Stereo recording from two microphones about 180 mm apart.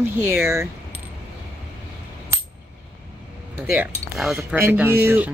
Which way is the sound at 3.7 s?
10° right (ahead or behind).